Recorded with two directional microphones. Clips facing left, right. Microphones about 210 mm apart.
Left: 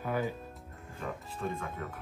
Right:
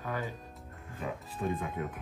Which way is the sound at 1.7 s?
15° right (ahead or behind).